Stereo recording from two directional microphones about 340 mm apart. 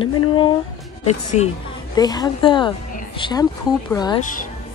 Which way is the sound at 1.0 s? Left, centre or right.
Centre.